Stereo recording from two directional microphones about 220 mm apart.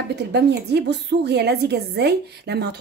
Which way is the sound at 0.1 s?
50° right (ahead or behind).